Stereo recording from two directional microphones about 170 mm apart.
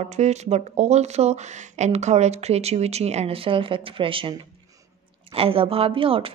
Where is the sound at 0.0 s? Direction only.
40° right (ahead or behind).